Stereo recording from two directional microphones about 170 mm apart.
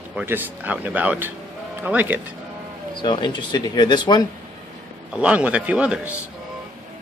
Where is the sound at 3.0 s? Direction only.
25° left (ahead or behind).